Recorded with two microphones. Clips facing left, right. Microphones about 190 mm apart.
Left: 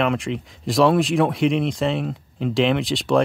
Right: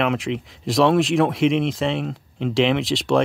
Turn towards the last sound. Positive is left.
turn(degrees=0)  # may be behind; listen again after turning